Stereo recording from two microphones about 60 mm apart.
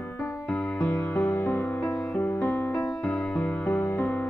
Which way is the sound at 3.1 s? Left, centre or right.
Centre.